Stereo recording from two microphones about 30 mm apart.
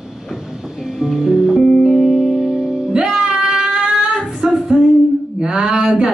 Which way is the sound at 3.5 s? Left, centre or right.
Right.